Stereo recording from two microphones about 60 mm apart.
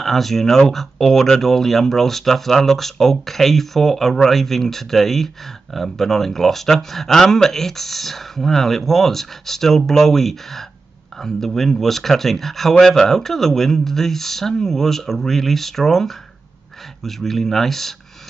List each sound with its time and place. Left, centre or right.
0.0 s speech: centre